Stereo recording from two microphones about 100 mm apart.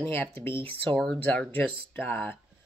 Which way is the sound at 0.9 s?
10° left (ahead or behind).